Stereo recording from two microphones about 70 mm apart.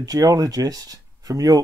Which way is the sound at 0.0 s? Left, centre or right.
Right.